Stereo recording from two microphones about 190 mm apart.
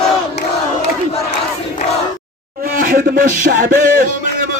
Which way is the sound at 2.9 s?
50° right (ahead or behind).